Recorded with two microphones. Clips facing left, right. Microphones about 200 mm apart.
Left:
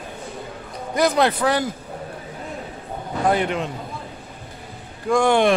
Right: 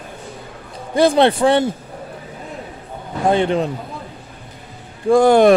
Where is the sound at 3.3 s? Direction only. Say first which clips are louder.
Right 7 dB; 30° right (ahead or behind).